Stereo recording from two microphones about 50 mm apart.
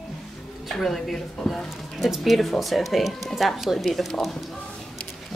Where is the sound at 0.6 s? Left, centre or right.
Centre.